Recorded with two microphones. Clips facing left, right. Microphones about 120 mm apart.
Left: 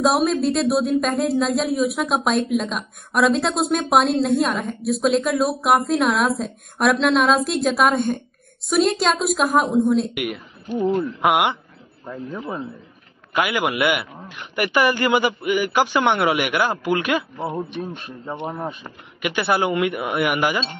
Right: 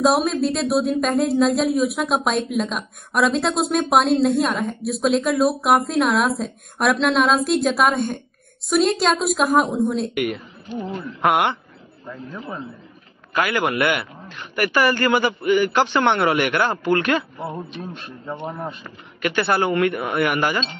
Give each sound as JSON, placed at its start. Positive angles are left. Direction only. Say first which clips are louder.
{"t": 0.0, "sound": "a man's voice", "louder": "even", "side_deg": 0}
{"t": 12.1, "sound": "a man's voice", "louder": "left 3 dB", "side_deg": 25}
{"t": 17.4, "sound": "speech", "louder": "left 3 dB", "side_deg": 25}
{"t": 17.9, "sound": "speech", "louder": "left 1 dB", "side_deg": 0}
{"t": 18.9, "sound": "a man's voice", "louder": "right 2 dB", "side_deg": 15}